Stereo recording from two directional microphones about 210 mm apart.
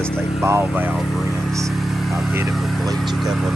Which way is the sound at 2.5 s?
Centre (ahead or behind).